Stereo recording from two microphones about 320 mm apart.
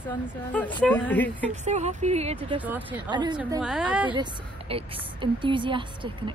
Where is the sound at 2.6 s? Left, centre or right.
Centre.